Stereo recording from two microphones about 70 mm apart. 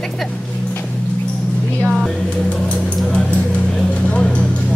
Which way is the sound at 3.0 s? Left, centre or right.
Centre.